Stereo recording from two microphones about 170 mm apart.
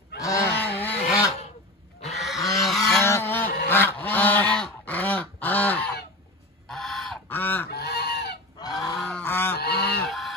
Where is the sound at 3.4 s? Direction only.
65° left (ahead or behind).